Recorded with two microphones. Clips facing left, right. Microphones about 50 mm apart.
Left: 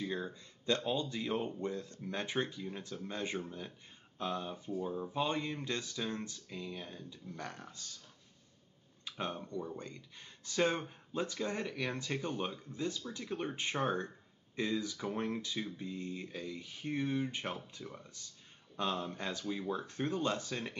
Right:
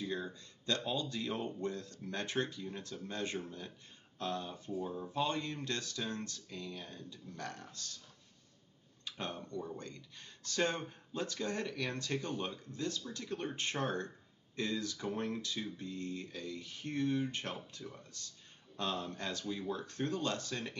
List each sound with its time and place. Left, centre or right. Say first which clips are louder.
0.0 s speech: left 1 dB; centre
9.0 s speech: left 2 dB; centre